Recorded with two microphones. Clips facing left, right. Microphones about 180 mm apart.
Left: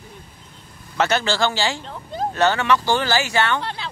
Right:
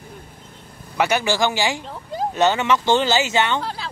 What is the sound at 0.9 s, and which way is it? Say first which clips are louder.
Speech: right 1 dB; 15° right (ahead or behind).